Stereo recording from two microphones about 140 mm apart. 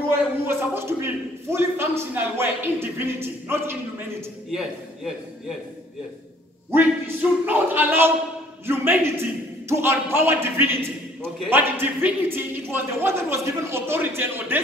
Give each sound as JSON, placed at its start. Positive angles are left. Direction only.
{"t": 0.5, "sound": "a man's voice", "side_deg": -15}
{"t": 4.5, "sound": "a man's voice", "side_deg": 0}
{"t": 6.7, "sound": "a man's voice", "side_deg": -15}